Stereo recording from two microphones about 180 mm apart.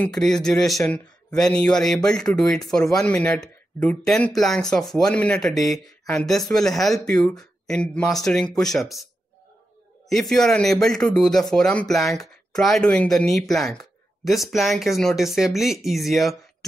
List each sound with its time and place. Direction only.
0.0 s speech: 5° left (ahead or behind)
10.0 s speech: centre (ahead or behind)